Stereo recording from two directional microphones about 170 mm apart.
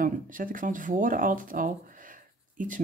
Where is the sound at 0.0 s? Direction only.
55° right (ahead or behind).